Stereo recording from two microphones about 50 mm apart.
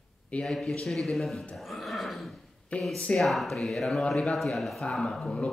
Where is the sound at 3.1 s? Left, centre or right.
Centre.